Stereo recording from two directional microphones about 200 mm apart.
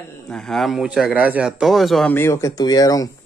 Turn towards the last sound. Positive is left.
turn(degrees=20)  # may be behind; listen again after turning